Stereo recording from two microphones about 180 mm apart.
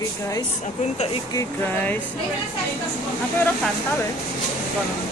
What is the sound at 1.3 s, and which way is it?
Speech, 15° left (ahead or behind).